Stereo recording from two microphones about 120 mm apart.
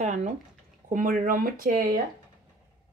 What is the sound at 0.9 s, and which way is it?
Speech, 90° right.